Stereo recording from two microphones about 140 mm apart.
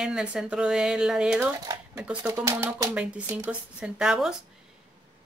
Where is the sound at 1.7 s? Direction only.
25° right (ahead or behind); by 4.4 s 5° right (ahead or behind).